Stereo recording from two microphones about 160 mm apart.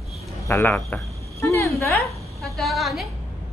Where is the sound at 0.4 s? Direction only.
15° left (ahead or behind).